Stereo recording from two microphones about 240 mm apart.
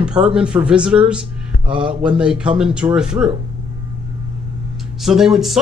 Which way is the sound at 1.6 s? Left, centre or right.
Right.